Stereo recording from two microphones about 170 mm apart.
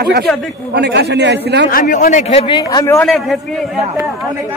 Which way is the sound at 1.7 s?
55° left (ahead or behind).